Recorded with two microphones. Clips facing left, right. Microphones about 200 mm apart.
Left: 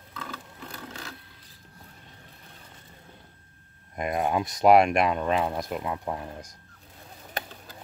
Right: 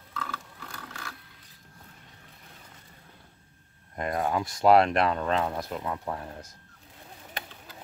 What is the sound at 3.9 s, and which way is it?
Speech, 15° left (ahead or behind).